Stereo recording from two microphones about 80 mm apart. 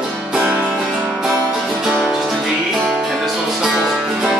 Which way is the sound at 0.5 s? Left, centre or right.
Centre.